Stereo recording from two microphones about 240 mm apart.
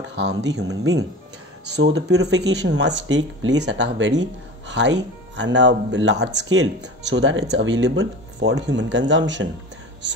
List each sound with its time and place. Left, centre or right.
0.1 s speech: right
1.7 s speech: right
3.7 s speech: right